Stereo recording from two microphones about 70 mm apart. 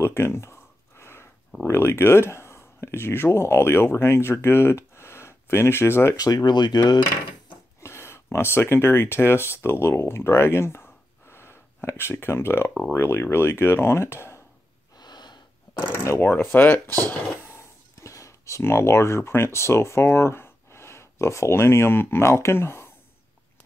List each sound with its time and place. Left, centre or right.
0.0 s a sound: left
1.6 s speech: left
6.1 s speech: left
7.8 s speech: left
15.0 s gasp: left
16.2 s speech: left
17.5 s a sound: left
18.6 s speech: left